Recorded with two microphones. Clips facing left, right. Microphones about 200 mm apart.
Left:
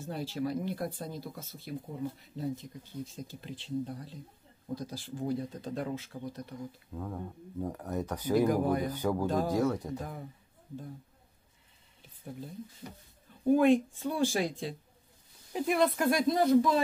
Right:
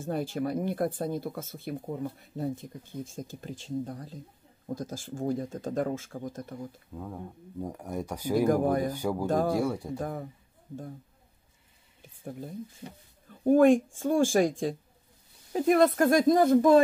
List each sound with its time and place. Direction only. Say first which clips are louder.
0.0 s speech: right 4 dB; 50° right (ahead or behind)
6.9 s speech: even; 5° right (ahead or behind)
8.5 s speech: right 3 dB; 45° right (ahead or behind)
8.8 s speech: right 1 dB; 10° right (ahead or behind)
9.9 s speech: right 6 dB; 50° right (ahead or behind)
13.5 s speech: right 4 dB; 50° right (ahead or behind)